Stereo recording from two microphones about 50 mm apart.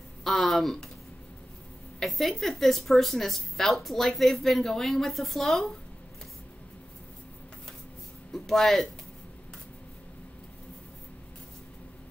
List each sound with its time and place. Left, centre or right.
0.2 s speech: centre
2.0 s speech: centre
8.3 s speech: centre